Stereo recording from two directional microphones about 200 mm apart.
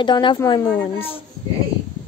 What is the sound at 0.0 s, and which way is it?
A woman's voice, 25° left (ahead or behind).